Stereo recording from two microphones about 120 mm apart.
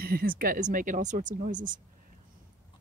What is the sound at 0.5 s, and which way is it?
Speech, 90° right.